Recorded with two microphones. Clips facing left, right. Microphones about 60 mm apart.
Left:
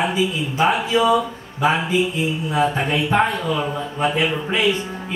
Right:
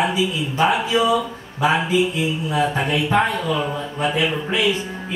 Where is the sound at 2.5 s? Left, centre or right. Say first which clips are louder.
Left 1 dB; left.